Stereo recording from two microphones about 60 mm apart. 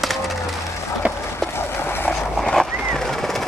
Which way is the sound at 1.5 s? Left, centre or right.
Left.